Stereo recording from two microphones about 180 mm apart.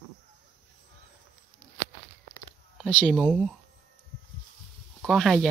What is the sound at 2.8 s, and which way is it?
Speech, 5° left (ahead or behind).